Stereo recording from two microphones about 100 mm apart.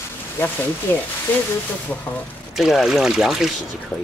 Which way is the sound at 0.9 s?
20° left (ahead or behind).